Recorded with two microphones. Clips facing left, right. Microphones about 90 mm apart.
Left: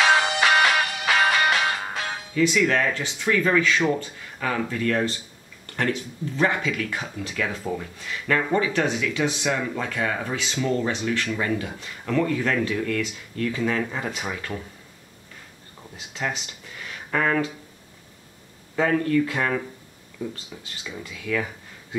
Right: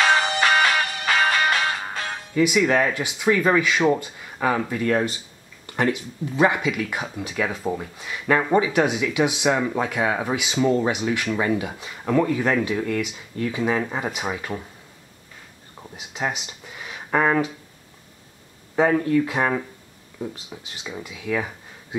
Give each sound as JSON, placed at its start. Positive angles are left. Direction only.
{"t": 0.0, "sound": "music", "side_deg": 0}
{"t": 2.3, "sound": "speech", "side_deg": -15}
{"t": 15.8, "sound": "speech", "side_deg": -15}
{"t": 17.1, "sound": "a sound", "side_deg": -20}
{"t": 18.8, "sound": "speech", "side_deg": -15}
{"t": 20.9, "sound": "speech", "side_deg": -5}